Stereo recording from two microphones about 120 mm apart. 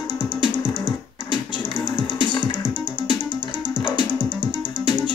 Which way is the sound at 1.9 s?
40° left (ahead or behind).